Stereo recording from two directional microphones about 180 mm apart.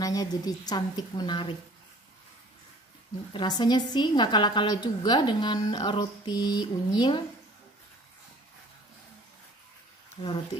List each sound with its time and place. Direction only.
0.0 s a woman's voice: 20° left (ahead or behind)
3.3 s a woman's voice: 25° left (ahead or behind)